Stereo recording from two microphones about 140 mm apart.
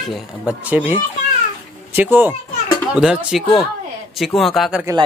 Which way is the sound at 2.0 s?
15° right (ahead or behind).